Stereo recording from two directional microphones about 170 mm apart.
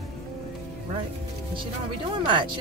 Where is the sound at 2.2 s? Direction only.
25° right (ahead or behind).